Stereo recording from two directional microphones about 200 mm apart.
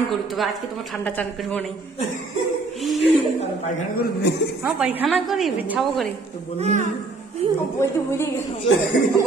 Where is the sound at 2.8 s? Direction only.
Centre (ahead or behind).